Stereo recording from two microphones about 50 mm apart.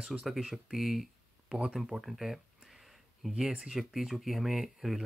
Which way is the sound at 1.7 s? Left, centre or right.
Centre.